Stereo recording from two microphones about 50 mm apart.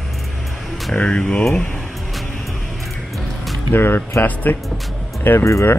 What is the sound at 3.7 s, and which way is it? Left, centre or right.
Speech, left.